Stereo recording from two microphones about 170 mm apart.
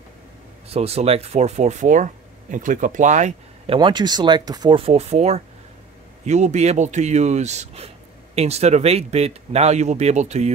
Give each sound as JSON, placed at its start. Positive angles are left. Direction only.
{"t": 0.7, "sound": "speech", "side_deg": -35}